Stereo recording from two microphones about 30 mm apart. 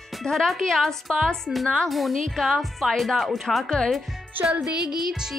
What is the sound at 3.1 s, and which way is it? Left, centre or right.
Speech, centre.